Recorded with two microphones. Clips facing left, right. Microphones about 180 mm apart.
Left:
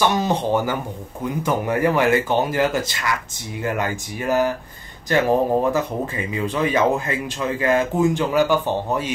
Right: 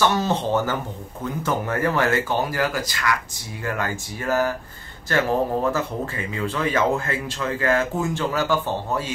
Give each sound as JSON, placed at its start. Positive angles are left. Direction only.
{"t": 0.0, "sound": "speech", "side_deg": 15}